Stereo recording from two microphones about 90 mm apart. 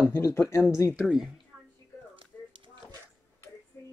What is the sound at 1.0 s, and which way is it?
Speech, 5° right (ahead or behind).